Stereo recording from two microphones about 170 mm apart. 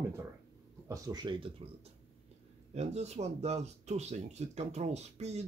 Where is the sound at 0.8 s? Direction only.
20° right (ahead or behind).